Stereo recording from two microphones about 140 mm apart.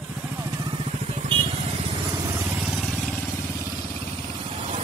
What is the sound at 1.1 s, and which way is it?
Vehicle, 40° right (ahead or behind).